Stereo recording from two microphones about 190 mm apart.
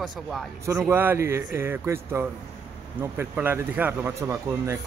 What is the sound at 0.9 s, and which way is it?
Speech, 10° right (ahead or behind).